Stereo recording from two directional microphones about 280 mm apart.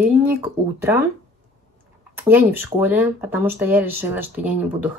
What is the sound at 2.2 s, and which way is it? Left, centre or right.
Speech, centre.